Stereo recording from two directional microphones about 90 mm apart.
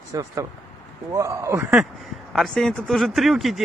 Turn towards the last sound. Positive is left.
turn(degrees=0)  # may be behind; listen again after turning